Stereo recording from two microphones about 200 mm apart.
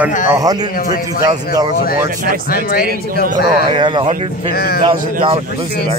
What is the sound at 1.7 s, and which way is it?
Speech, 45° left (ahead or behind).